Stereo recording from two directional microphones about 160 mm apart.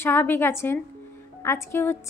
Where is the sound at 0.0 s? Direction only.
15° left (ahead or behind).